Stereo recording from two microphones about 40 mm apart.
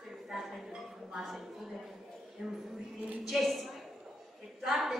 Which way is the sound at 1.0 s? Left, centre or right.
Centre.